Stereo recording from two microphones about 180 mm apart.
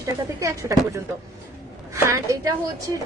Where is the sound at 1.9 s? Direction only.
15° right (ahead or behind).